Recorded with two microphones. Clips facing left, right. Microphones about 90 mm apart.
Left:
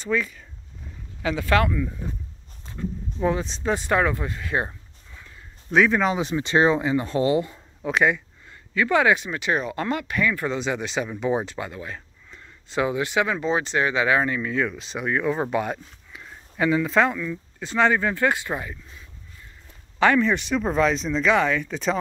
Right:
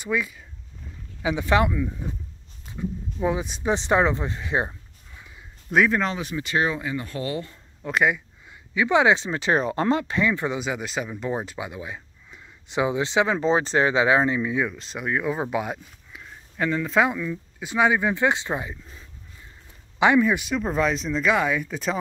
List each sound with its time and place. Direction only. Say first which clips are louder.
0.0 s speech: left 1 dB; 10° right (ahead or behind)
3.7 s speech: right 1 dB; 20° right (ahead or behind)
5.7 s speech: left 2 dB; centre (ahead or behind)
6.1 s speech: left 4 dB; 25° left (ahead or behind)
7.8 s a sound: left 1 dB; centre (ahead or behind)
8.7 s speech: right 1 dB; 20° right (ahead or behind)
10.6 s speech: left 2 dB; 5° right (ahead or behind)
14.7 s speech: left 1 dB; centre (ahead or behind)
17.0 s speech: even; 10° right (ahead or behind)
20.0 s speech: even; 15° right (ahead or behind)